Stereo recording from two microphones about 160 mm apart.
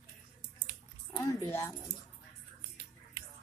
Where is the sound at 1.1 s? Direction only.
25° left (ahead or behind).